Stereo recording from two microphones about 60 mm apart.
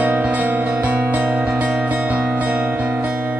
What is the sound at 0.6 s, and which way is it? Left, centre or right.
Music, right.